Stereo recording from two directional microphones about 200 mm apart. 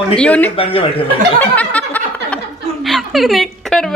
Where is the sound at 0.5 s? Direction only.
30° left (ahead or behind).